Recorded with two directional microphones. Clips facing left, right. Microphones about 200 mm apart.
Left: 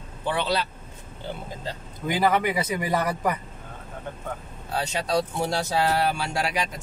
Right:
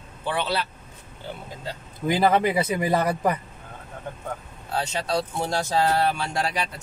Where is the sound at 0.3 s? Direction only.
15° left (ahead or behind).